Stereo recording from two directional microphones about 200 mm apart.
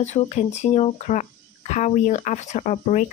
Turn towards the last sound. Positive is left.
turn(degrees=35)  # may be behind; listen again after turning